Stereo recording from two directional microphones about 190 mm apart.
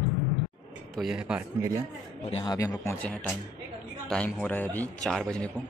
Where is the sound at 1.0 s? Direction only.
5° right (ahead or behind).